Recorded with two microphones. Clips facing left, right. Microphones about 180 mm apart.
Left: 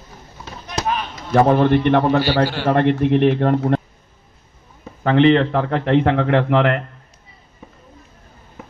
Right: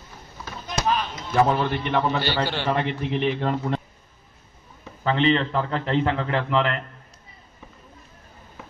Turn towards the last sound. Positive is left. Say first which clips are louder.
# left 7 dB
turn(degrees=60)  # may be behind; listen again after turning